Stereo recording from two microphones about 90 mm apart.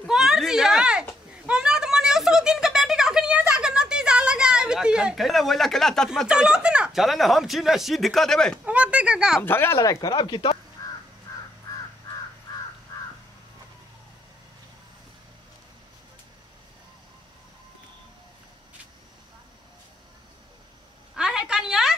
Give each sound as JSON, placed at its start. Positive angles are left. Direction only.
{"t": 0.0, "sound": "a sound", "side_deg": -5}
{"t": 6.2, "sound": "speech", "side_deg": -10}
{"t": 8.6, "sound": "speech", "side_deg": -15}
{"t": 9.4, "sound": "speech", "side_deg": 25}
{"t": 9.8, "sound": "speech", "side_deg": 40}
{"t": 10.8, "sound": "crow", "side_deg": 45}
{"t": 21.1, "sound": "a sound", "side_deg": -5}